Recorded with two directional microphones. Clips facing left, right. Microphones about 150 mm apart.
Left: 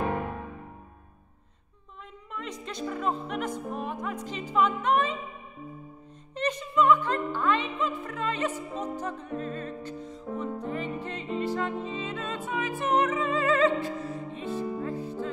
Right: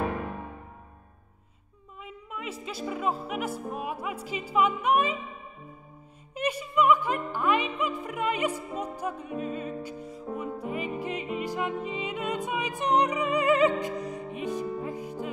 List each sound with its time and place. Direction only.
2.0 s music: 5° right (ahead or behind)
6.3 s music: 10° right (ahead or behind)